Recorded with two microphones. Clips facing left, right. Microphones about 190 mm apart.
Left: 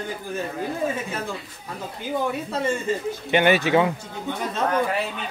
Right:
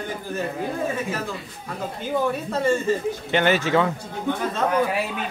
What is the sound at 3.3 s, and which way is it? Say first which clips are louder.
Speech: left 2 dB; 15° left (ahead or behind).